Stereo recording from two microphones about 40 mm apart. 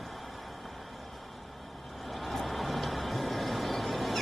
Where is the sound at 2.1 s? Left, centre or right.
Centre.